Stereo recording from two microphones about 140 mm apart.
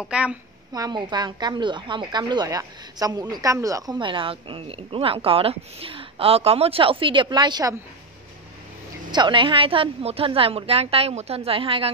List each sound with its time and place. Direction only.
0.0 s a woman's voice: 10° right (ahead or behind)
0.7 s a woman's voice: 30° right (ahead or behind)
4.0 s speech: 35° right (ahead or behind)
9.1 s a woman's voice: 35° right (ahead or behind)